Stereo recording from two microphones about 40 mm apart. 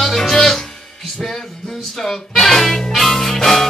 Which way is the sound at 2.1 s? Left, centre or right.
Centre.